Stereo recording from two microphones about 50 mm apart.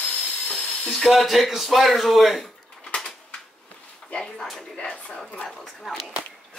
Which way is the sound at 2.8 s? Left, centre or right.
Centre.